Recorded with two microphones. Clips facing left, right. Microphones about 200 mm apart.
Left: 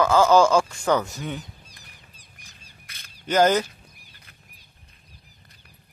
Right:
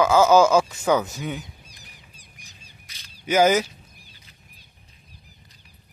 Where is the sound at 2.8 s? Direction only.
55° left (ahead or behind).